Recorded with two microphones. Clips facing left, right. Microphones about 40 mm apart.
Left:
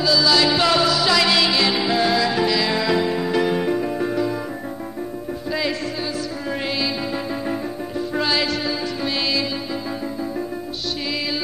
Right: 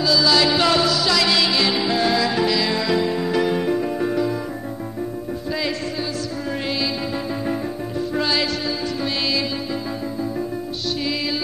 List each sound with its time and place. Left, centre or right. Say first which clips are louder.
0.0 s music: even; centre
5.5 s music: left 1 dB; centre
8.1 s music: left 1 dB; centre
11.0 s music: right 1 dB; centre